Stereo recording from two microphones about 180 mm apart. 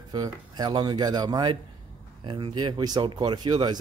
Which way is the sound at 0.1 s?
20° right (ahead or behind).